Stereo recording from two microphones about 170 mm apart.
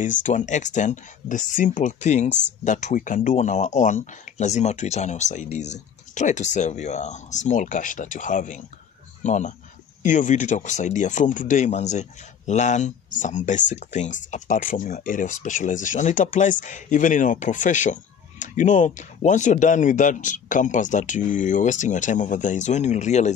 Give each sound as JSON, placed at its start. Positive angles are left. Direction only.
{"t": 0.0, "sound": "speech", "side_deg": 50}